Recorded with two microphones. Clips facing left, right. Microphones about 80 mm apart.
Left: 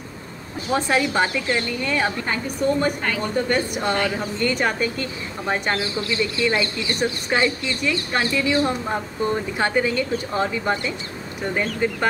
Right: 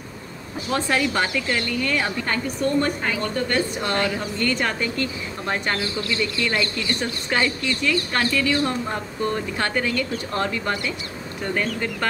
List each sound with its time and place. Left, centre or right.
0.7 s a woman's voice: centre